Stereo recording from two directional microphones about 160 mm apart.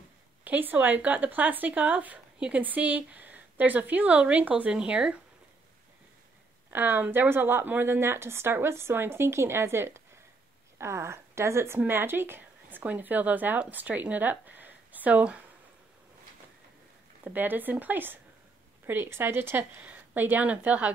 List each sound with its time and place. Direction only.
0.4 s speech: 10° right (ahead or behind)
6.7 s speech: 10° right (ahead or behind)
17.2 s speech: 10° right (ahead or behind)